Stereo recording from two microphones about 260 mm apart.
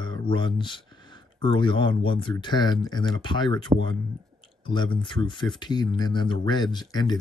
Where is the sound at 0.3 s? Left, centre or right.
Centre.